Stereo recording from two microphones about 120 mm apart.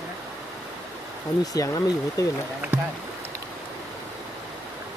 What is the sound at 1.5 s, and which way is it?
Speech, 30° left (ahead or behind).